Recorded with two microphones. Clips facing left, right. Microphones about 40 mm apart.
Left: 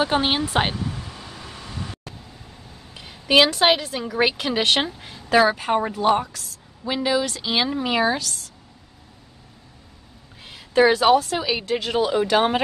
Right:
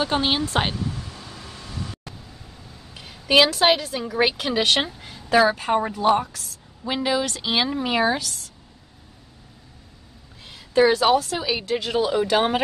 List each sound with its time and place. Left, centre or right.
0.0 s a sound: centre
2.9 s a woman's voice: centre
7.0 s a woman's voice: centre
7.5 s a woman's voice: centre
10.4 s a sound: centre
11.0 s speech: centre